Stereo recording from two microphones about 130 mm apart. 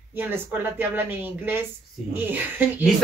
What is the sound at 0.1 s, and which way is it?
A woman's voice, 15° right (ahead or behind).